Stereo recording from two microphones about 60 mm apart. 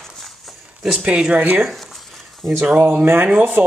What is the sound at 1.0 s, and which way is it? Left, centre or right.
Speech, centre.